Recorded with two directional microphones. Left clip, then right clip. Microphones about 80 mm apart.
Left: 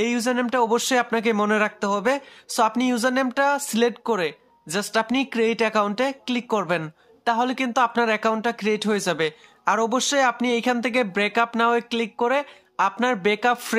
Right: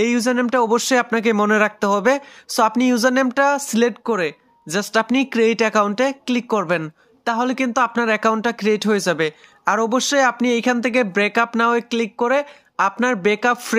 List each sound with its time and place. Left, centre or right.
0.0 s speech: right
4.6 s speech: right
8.2 s speech: right